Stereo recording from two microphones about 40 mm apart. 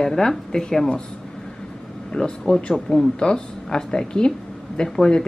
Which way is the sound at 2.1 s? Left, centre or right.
Left.